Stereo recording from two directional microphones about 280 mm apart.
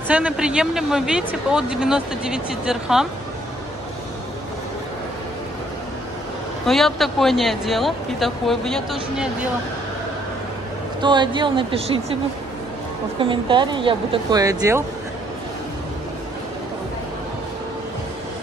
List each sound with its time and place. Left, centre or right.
0.1 s speech: centre
6.6 s speech: centre
11.0 s a woman's voice: centre
13.2 s a woman's voice: centre